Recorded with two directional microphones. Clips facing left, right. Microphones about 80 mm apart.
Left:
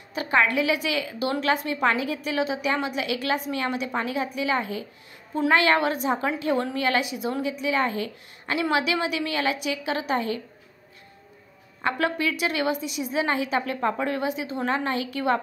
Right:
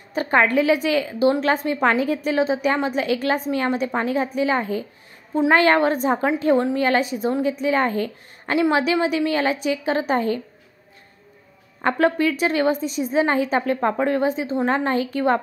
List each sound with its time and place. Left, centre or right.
0.1 s a woman's voice: right
11.8 s a woman's voice: right